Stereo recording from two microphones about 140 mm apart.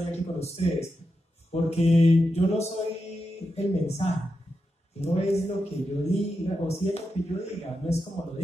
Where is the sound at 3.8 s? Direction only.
50° left (ahead or behind).